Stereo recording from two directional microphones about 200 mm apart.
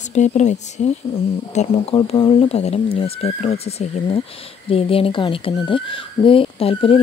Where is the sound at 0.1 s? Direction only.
35° left (ahead or behind).